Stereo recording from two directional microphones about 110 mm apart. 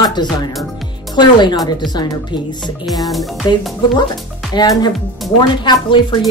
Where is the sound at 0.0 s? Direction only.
40° left (ahead or behind).